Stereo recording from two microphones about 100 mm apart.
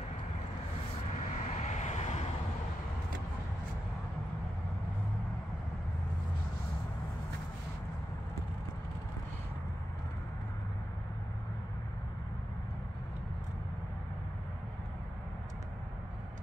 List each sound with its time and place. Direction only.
1.6 s vehicle: 90° left